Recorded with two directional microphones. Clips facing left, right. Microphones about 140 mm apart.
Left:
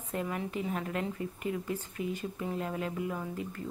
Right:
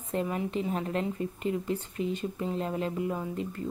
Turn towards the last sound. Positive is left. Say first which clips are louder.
# right 4 dB
turn(degrees=-25)  # may be behind; listen again after turning